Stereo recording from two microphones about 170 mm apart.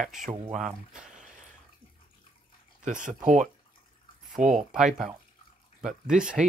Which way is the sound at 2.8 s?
50° right (ahead or behind).